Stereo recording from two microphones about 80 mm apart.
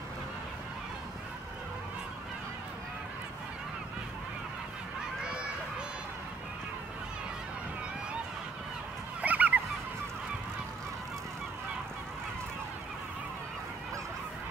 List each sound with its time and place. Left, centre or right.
9.2 s fowl: centre